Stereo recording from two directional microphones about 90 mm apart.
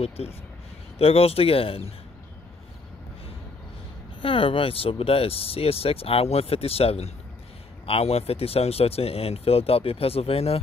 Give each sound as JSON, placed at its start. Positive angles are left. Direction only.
{"t": 0.2, "sound": "speech", "side_deg": 90}
{"t": 4.2, "sound": "speech", "side_deg": 85}